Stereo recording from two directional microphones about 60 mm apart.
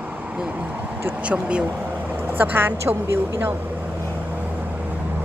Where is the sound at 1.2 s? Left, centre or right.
Centre.